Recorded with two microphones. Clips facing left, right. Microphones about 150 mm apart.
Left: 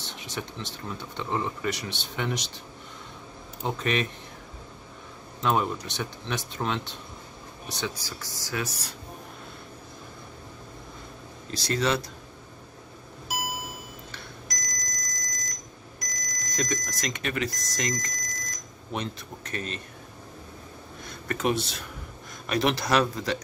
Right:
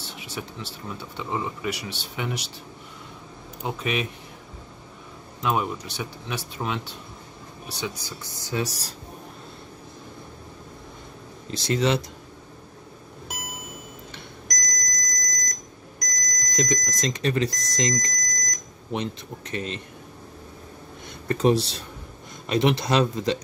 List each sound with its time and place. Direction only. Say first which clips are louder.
0.1 s speech: even; 5° right (ahead or behind)
3.6 s speech: even; 5° right (ahead or behind)
5.4 s speech: even; 5° right (ahead or behind)
8.6 s speech: right 2 dB; 35° right (ahead or behind)
11.5 s speech: right 3 dB; 20° right (ahead or behind)
14.5 s smoke detector: right 6 dB; 10° left (ahead or behind)
16.1 s alarm: right 4 dB; 10° left (ahead or behind)
17.0 s speech: right 7 dB; 30° right (ahead or behind)
17.9 s alarm clock: right 4 dB; 10° left (ahead or behind)
18.9 s speech: right 4 dB; 20° right (ahead or behind)
21.1 s speech: right 6 dB; 30° right (ahead or behind)
22.5 s speech: right 3 dB; 20° right (ahead or behind)